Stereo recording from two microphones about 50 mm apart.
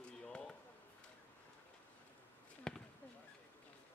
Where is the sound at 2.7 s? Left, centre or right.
Centre.